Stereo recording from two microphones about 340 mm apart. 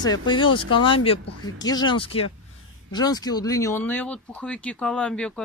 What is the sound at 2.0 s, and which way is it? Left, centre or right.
Speech, left.